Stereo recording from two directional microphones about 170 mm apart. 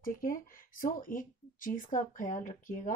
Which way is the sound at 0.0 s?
55° left (ahead or behind).